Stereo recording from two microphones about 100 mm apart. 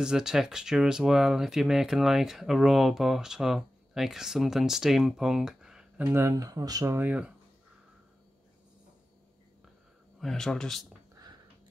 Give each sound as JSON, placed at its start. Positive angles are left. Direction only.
{"t": 0.0, "sound": "speech", "side_deg": -5}
{"t": 5.9, "sound": "speech", "side_deg": -25}
{"t": 7.0, "sound": "speech", "side_deg": -15}
{"t": 10.2, "sound": "speech", "side_deg": 5}